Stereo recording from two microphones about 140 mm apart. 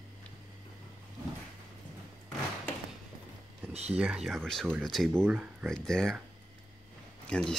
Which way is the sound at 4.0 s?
5° right (ahead or behind).